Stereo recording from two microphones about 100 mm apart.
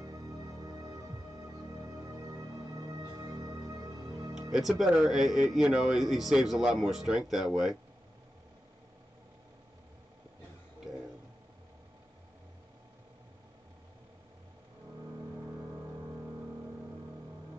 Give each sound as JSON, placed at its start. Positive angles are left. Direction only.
{"t": 0.0, "sound": "music", "side_deg": -35}
{"t": 4.4, "sound": "speech", "side_deg": -5}